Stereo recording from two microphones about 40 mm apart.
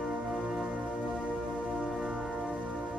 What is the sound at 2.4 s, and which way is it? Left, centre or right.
Music, right.